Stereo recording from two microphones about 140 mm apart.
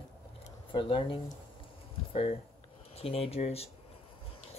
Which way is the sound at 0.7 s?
40° left (ahead or behind).